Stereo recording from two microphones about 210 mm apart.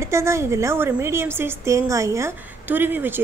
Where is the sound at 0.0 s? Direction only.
15° right (ahead or behind).